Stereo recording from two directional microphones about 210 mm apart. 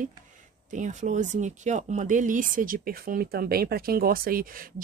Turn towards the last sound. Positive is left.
turn(degrees=-45)  # may be behind; listen again after turning